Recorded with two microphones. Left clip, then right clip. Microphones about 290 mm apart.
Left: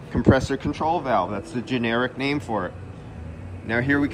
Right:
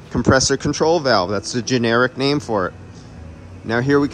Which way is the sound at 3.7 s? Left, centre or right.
Centre.